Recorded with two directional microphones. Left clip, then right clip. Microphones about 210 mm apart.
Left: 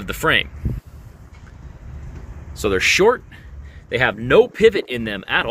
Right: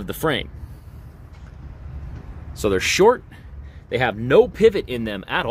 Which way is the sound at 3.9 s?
5° right (ahead or behind).